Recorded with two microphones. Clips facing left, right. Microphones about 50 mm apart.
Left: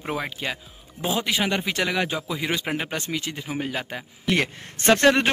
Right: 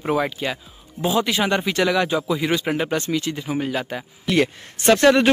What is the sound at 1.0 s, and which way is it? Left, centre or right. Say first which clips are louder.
Speech: right 4 dB; centre.